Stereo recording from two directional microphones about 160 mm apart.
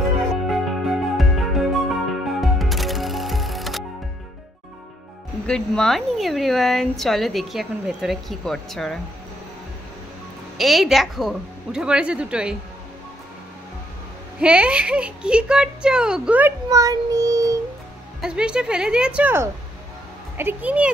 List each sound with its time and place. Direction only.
0.5 s music: centre (ahead or behind)
5.5 s a woman's voice: 5° left (ahead or behind)
10.6 s a woman's voice: centre (ahead or behind)
14.4 s speech: 5° right (ahead or behind)
16.6 s child singing: 20° right (ahead or behind)
18.2 s a woman's voice: 5° right (ahead or behind)